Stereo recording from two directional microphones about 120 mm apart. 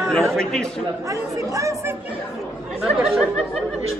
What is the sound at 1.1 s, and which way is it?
Speech, 25° right (ahead or behind).